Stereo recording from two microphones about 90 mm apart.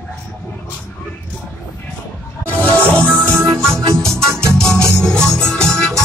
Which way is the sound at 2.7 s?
10° left (ahead or behind).